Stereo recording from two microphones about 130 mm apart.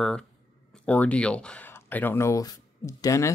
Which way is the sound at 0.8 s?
10° left (ahead or behind).